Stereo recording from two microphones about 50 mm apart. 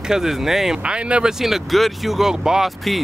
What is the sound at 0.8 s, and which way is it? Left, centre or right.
Speech, right.